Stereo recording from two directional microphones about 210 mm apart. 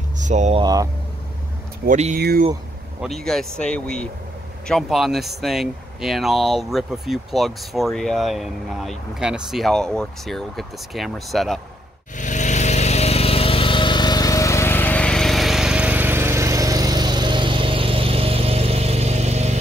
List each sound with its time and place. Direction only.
0.2 s speech: 35° right (ahead or behind)
0.6 s speech: 20° right (ahead or behind)
1.9 s speech: 35° right (ahead or behind)
2.1 s speech: 50° right (ahead or behind)
3.0 s speech: centre (ahead or behind)
12.2 s lawn mower: 35° left (ahead or behind); by 19.6 s 30° right (ahead or behind)